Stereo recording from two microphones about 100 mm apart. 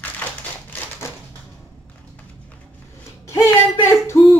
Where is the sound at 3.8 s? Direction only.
25° left (ahead or behind).